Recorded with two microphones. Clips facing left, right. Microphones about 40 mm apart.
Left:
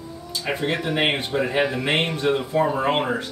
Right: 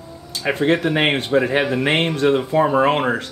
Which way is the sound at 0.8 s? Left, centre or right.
Right.